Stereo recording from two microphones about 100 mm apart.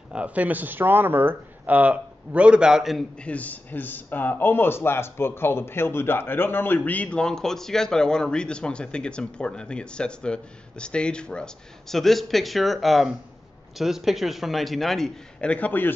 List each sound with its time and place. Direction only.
0.1 s speech: 15° right (ahead or behind)
3.3 s a man's voice: 15° left (ahead or behind)
15.5 s speech: 15° left (ahead or behind)